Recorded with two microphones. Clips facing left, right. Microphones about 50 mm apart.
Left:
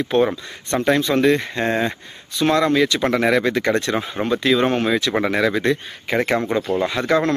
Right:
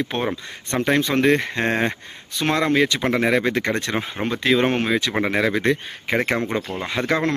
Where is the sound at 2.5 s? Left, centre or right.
Right.